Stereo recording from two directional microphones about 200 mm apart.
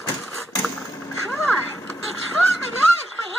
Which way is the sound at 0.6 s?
5° left (ahead or behind).